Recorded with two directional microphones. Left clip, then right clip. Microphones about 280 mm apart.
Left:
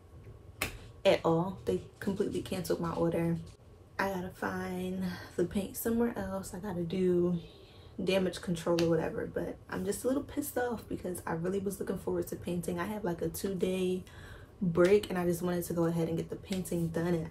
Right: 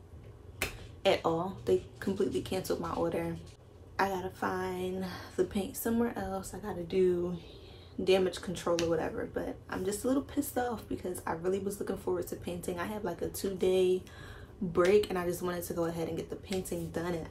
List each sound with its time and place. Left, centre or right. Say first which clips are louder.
1.0 s speech: left 1 dB; centre